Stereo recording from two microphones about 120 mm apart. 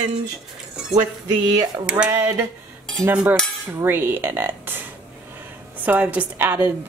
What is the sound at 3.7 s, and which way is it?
Speech, 20° right (ahead or behind).